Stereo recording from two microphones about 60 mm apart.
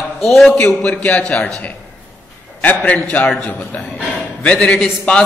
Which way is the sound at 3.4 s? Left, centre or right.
Centre.